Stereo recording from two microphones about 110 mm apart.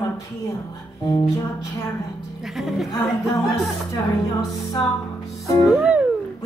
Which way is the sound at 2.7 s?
Centre (ahead or behind).